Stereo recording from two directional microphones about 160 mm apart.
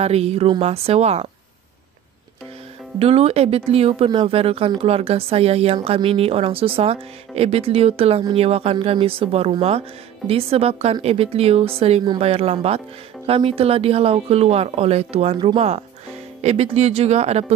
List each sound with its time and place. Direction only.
0.0 s speech: 40° right (ahead or behind)
3.0 s speech: 40° right (ahead or behind)